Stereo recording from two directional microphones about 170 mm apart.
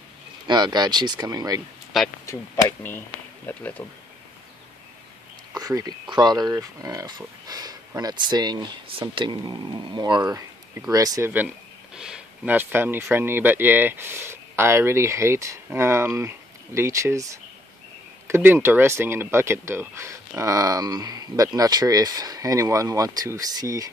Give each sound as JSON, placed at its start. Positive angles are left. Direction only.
{"t": 0.5, "sound": "speech", "side_deg": -25}
{"t": 2.2, "sound": "speech", "side_deg": 15}
{"t": 5.5, "sound": "speech", "side_deg": -20}
{"t": 11.4, "sound": "speech", "side_deg": -5}